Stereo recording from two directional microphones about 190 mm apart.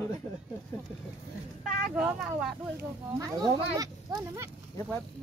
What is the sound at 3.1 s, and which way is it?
Speech, 15° right (ahead or behind).